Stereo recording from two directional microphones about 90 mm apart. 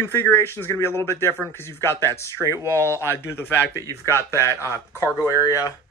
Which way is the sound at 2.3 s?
35° right (ahead or behind).